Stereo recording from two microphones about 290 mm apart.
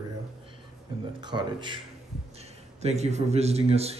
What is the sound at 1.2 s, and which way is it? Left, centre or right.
Speech, centre.